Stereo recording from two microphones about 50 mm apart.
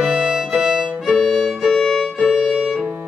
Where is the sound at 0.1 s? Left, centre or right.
Centre.